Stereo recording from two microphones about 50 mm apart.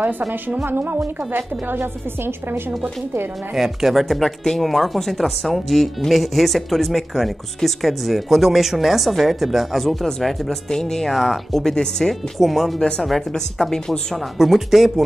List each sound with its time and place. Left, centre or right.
0.7 s a woman's voice: right
3.5 s speech: centre
12.4 s speech: centre
14.1 s speech: centre